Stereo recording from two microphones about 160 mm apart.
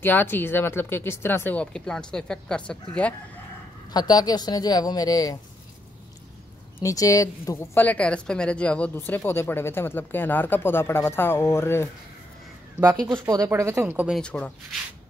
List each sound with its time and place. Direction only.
0.0 s speech: 15° left (ahead or behind)
3.9 s a woman's voice: 25° left (ahead or behind)
6.8 s speech: 20° left (ahead or behind)
13.2 s speech: 20° right (ahead or behind)
14.1 s speech: 5° left (ahead or behind)